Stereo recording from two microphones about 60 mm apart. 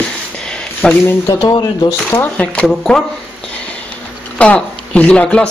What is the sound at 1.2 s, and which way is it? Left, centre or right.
Speech, left.